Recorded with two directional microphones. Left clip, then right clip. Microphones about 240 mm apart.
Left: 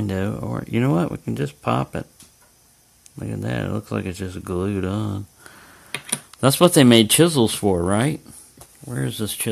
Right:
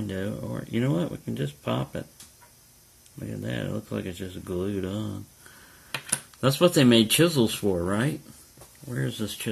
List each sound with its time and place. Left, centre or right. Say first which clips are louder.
0.0 s speech: left 6 dB; left
3.3 s speech: left 6 dB; left
6.3 s speech: left 6 dB; left